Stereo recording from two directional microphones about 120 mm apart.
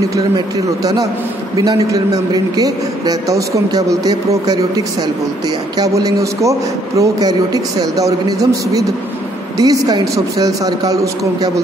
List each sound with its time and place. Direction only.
0.1 s a man's voice: 30° right (ahead or behind)